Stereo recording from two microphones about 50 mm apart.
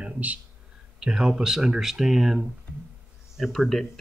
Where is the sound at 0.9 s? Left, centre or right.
Centre.